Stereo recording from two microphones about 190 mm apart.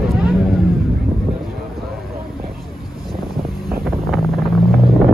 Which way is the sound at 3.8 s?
Centre (ahead or behind).